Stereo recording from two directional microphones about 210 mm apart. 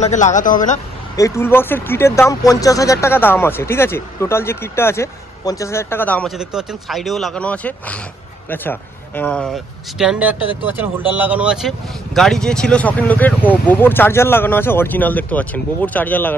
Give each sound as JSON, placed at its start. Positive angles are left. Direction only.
{"t": 0.0, "sound": "speech", "side_deg": 35}
{"t": 1.1, "sound": "speech", "side_deg": 15}